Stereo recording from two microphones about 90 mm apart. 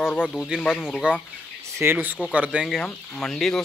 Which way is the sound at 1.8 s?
25° right (ahead or behind).